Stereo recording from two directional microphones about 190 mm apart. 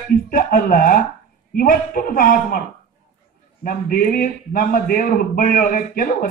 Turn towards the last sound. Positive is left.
turn(degrees=50)  # may be behind; listen again after turning